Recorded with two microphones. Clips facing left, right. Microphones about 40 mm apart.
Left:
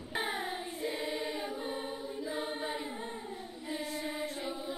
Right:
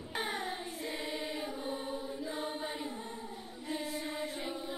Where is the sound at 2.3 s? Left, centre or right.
Centre.